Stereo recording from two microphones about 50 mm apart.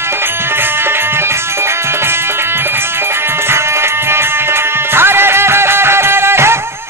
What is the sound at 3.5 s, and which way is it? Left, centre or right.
Music, right.